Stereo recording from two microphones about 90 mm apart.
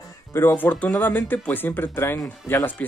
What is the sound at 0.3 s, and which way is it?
Speech, 25° left (ahead or behind).